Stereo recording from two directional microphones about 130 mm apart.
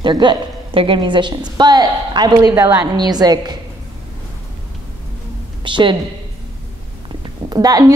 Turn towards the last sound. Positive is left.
turn(degrees=-30)  # may be behind; listen again after turning